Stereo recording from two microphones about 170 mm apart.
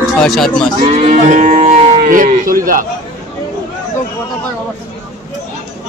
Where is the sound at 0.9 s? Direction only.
45° right (ahead or behind).